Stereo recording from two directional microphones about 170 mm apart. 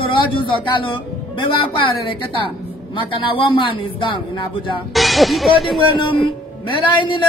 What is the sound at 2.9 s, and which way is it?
Speech, 30° left (ahead or behind).